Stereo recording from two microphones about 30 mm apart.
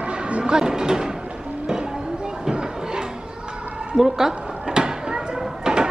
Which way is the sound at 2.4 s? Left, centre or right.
Right.